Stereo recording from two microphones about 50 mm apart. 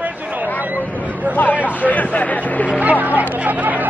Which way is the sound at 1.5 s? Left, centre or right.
Right.